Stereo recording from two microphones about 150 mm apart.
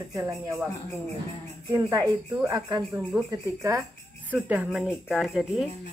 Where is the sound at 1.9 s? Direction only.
25° right (ahead or behind); by 5.7 s centre (ahead or behind).